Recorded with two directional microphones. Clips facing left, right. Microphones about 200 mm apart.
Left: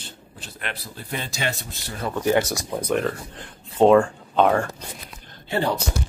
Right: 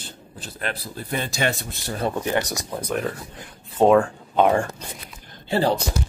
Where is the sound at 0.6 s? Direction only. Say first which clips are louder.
Right 4 dB; 50° right (ahead or behind).